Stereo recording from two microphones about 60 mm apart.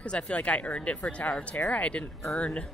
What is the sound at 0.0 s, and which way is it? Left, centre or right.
Speech, left.